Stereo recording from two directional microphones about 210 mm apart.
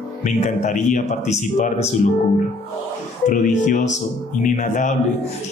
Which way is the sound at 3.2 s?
35° left (ahead or behind).